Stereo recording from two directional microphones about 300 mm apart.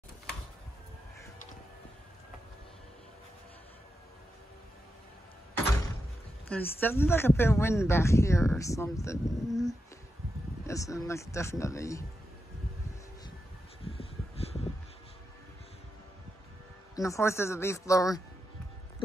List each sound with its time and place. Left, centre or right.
6.5 s speech: centre
13.8 s a sound: centre
16.9 s speech: centre